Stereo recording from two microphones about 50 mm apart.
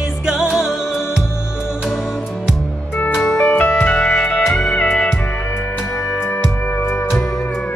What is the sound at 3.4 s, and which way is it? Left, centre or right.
Music, left.